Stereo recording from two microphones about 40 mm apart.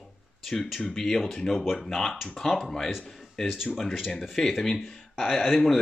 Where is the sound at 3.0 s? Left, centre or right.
Centre.